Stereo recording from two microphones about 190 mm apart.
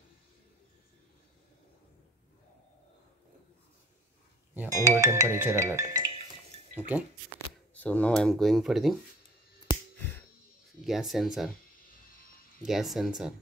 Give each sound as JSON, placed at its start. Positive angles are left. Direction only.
{"t": 4.6, "sound": "speech", "side_deg": -15}
{"t": 7.7, "sound": "speech", "side_deg": 10}
{"t": 9.7, "sound": "music", "side_deg": 25}
{"t": 10.8, "sound": "speech", "side_deg": 0}
{"t": 12.6, "sound": "speech", "side_deg": 0}